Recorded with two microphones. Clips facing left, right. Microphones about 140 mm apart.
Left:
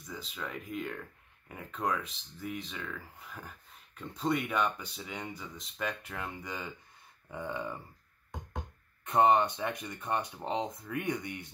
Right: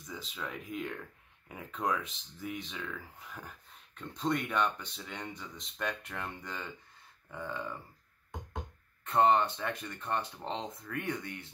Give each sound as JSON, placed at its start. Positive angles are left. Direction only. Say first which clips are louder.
{"t": 0.0, "sound": "speech", "louder": "even", "side_deg": 0}
{"t": 9.0, "sound": "speech", "louder": "left 1 dB", "side_deg": 15}